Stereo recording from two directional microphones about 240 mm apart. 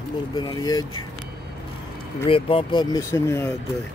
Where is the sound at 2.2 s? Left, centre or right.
Left.